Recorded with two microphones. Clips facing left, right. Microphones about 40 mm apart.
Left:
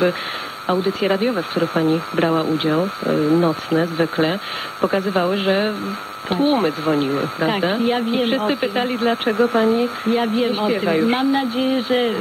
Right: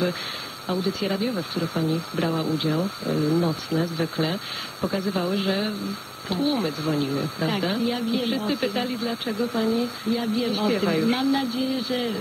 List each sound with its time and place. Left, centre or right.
0.8 s speech: left
10.4 s speech: left
11.0 s speech: left